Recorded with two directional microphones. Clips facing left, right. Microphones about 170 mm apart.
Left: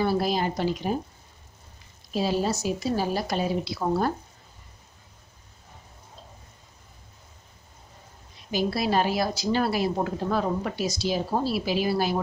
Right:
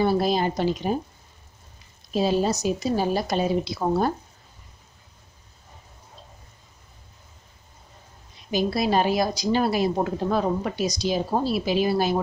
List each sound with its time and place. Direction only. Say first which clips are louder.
0.0 s a woman's voice: right 3 dB; 25° right (ahead or behind)
2.1 s a woman's voice: right 3 dB; 20° right (ahead or behind)
8.5 s a woman's voice: right 2 dB; 20° right (ahead or behind)